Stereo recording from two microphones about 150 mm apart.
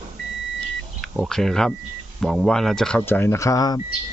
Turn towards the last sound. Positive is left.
turn(degrees=25)  # may be behind; listen again after turning